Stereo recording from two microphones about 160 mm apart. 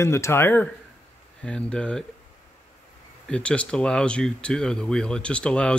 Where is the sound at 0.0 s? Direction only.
15° left (ahead or behind).